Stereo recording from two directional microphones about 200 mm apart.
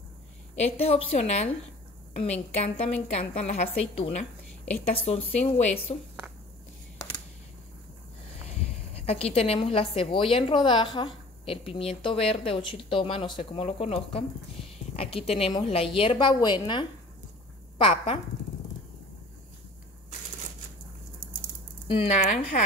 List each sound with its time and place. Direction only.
0.6 s a woman's voice: 30° left (ahead or behind)
2.5 s a woman's voice: 30° left (ahead or behind)
8.9 s a woman's voice: 30° left (ahead or behind)
21.8 s speech: 25° left (ahead or behind)